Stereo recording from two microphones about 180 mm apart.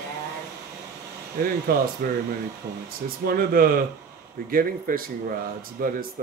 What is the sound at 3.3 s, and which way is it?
A man's voice, 55° right (ahead or behind).